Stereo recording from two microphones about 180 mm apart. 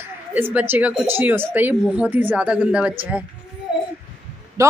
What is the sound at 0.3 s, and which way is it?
A woman's voice, 10° right (ahead or behind).